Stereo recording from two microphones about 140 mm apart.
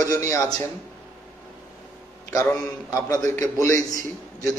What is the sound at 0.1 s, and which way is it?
Speech, 20° left (ahead or behind).